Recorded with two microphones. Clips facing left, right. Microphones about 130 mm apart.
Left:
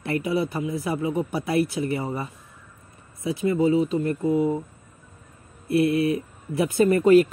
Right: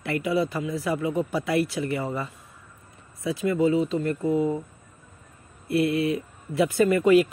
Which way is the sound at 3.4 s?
25° left (ahead or behind).